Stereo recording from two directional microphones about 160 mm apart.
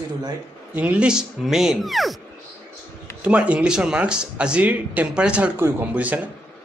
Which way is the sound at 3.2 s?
10° right (ahead or behind).